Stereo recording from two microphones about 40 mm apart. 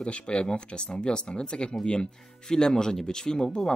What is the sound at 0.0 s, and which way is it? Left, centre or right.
Speech, left.